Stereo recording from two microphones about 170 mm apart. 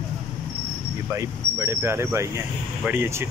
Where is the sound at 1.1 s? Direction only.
15° right (ahead or behind).